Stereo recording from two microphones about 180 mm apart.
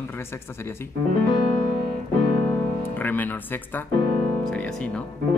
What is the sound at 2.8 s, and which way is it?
Speech, 10° left (ahead or behind).